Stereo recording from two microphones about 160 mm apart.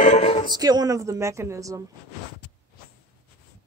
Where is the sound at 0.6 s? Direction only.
25° right (ahead or behind).